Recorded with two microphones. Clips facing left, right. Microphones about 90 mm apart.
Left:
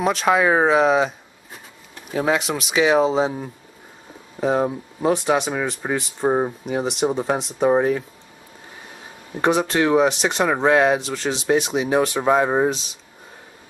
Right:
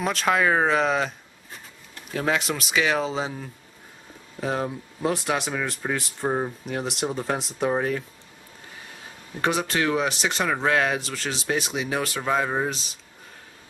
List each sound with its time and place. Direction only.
0.0 s speech: 5° left (ahead or behind)
4.4 s speech: 5° left (ahead or behind)
6.2 s speech: 20° left (ahead or behind)
6.6 s speech: centre (ahead or behind)
9.4 s speech: 5° left (ahead or behind)
10.4 s speech: 15° left (ahead or behind)
11.0 s speech: 5° left (ahead or behind)
12.2 s speech: 20° left (ahead or behind)